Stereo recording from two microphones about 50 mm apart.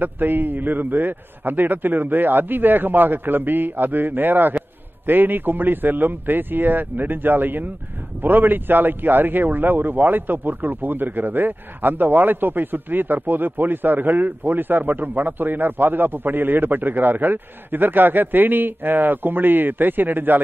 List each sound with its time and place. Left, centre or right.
0.0 s a man's voice: right